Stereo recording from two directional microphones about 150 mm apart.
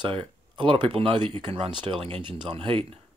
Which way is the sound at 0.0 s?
35° right (ahead or behind).